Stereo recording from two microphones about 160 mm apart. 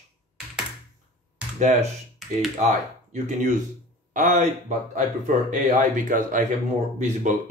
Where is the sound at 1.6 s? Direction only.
50° right (ahead or behind).